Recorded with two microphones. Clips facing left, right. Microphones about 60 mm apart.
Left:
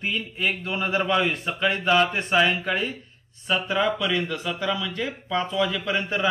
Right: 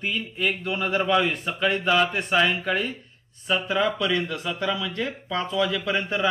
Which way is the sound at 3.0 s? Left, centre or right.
Centre.